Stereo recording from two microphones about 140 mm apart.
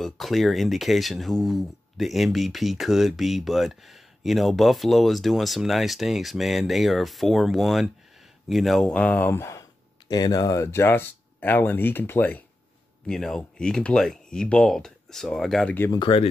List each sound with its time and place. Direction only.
0.0 s speech: centre (ahead or behind)
15.9 s speech: 35° left (ahead or behind)